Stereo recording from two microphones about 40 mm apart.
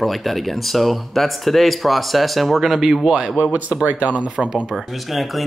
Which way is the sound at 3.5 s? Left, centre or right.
Right.